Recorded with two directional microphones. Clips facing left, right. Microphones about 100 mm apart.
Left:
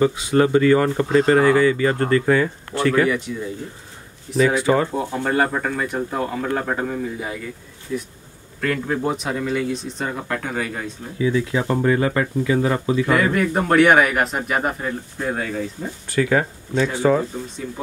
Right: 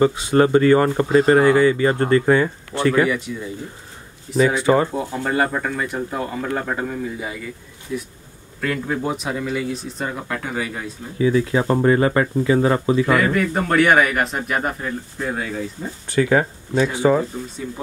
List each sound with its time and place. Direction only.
0.0 s speech: 35° right (ahead or behind)
2.9 s a man's voice: 5° right (ahead or behind)
11.1 s speech: 40° right (ahead or behind)
13.0 s a man's voice: centre (ahead or behind)
16.1 s speech: 25° right (ahead or behind)
16.7 s speech: 10° right (ahead or behind)